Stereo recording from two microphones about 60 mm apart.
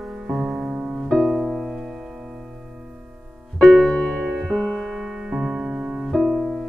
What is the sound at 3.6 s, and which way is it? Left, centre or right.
Music, centre.